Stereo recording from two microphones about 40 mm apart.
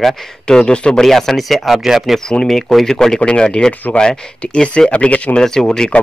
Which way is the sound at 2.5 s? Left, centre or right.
Centre.